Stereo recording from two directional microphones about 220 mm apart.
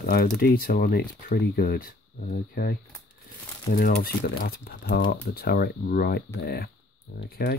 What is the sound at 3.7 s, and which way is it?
Speech, 40° left (ahead or behind).